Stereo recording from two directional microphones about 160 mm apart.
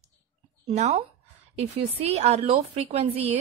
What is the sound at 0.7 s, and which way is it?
A woman's voice, 45° right (ahead or behind).